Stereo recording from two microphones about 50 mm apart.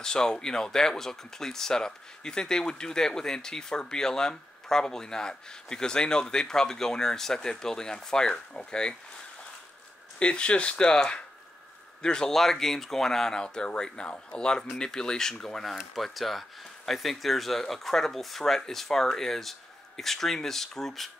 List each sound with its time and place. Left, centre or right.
0.0 s speech: centre
10.1 s speech: left; by 21.1 s centre